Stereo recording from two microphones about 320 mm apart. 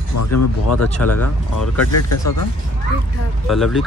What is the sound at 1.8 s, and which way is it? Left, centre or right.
Speech, left.